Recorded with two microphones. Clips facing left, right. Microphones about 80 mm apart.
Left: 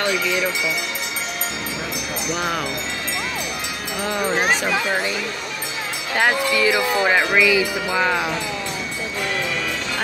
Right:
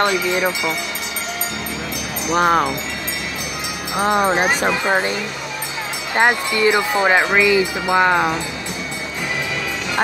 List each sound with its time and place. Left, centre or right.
0.0 s speech: right
2.3 s speech: right
3.9 s speech: right
4.8 s speech: right
6.1 s speech: right